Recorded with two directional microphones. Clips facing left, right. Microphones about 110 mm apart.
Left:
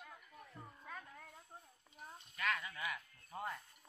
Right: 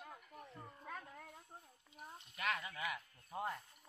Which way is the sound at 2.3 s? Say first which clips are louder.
Left 1 dB; 25° right (ahead or behind).